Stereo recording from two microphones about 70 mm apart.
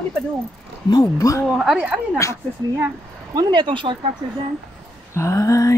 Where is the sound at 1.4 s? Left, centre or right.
Centre.